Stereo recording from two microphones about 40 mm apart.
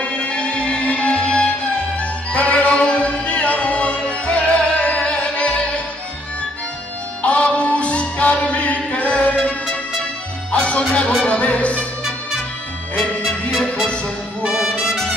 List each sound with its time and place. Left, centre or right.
0.0 s music: left
7.2 s music: left
14.6 s brass instrument: centre